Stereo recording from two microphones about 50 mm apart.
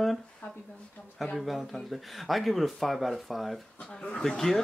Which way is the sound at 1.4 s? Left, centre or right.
Centre.